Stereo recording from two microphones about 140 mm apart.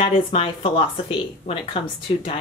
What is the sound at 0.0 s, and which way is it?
Speech, 40° left (ahead or behind).